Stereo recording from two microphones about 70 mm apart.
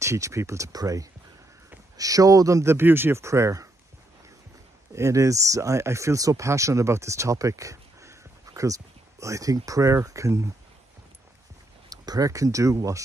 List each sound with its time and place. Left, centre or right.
0.0 s speech: right
4.9 s speech: right
11.9 s speech: right